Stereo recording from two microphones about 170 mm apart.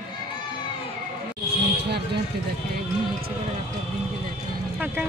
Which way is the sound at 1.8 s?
75° right (ahead or behind).